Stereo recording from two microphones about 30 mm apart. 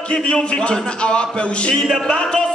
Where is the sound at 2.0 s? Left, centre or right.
Left.